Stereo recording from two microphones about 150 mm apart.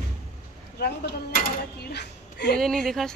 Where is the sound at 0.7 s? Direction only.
90° left.